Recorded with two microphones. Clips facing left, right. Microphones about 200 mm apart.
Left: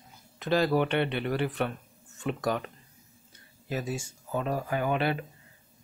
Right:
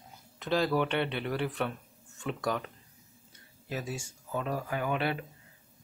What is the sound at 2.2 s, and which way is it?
Speech, 60° left (ahead or behind).